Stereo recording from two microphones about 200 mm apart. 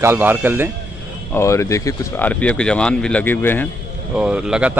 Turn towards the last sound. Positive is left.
turn(degrees=-5)  # may be behind; listen again after turning